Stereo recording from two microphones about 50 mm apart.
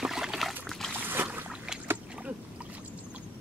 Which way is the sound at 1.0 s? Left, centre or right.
Right.